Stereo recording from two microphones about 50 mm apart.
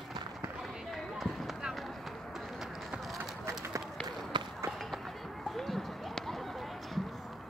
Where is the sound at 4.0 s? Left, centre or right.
Centre.